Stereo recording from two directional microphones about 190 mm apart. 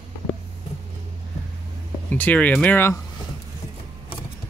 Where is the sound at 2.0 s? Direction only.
10° left (ahead or behind).